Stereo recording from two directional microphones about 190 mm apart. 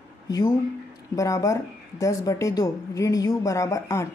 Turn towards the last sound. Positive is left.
turn(degrees=15)  # may be behind; listen again after turning